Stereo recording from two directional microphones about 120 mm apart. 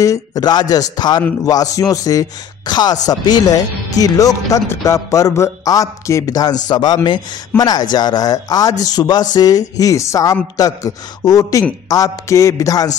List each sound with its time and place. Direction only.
0.0 s a man's voice: 30° left (ahead or behind)